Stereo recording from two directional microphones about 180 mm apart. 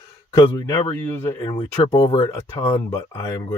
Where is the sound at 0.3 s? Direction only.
20° left (ahead or behind).